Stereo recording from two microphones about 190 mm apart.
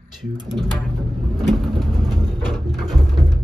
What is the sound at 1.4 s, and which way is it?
Vehicle, centre (ahead or behind).